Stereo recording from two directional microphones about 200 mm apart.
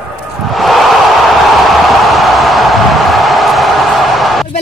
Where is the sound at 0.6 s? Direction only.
Centre (ahead or behind).